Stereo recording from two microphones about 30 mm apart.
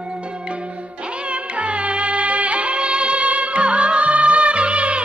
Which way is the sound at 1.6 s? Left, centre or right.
Right.